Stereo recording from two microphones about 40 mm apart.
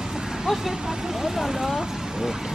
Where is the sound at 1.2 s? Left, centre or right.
Centre.